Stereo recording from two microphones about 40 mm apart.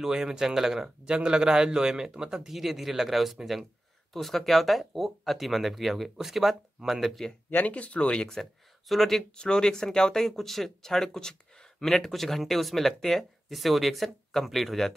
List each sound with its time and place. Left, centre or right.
0.0 s speech: centre
1.0 s a man's voice: right
2.5 s speech: centre
7.7 s speech: left
8.4 s speech: centre
9.4 s speech: centre